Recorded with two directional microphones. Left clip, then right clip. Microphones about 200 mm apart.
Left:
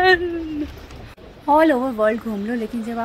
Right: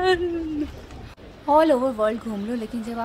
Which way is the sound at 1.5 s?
Centre (ahead or behind).